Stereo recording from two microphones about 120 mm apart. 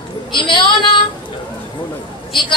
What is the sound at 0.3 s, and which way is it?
Speech, 40° left (ahead or behind).